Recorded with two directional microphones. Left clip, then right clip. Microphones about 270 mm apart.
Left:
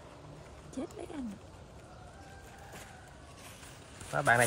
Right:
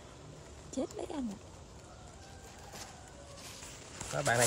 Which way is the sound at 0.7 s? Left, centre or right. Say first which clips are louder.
Right 4 dB; right.